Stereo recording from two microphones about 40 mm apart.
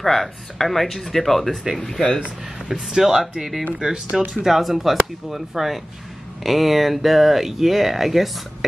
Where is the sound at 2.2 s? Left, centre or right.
Centre.